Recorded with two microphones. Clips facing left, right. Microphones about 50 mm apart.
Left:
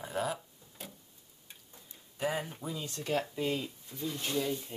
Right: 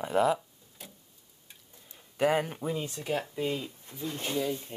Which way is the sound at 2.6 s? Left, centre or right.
Right.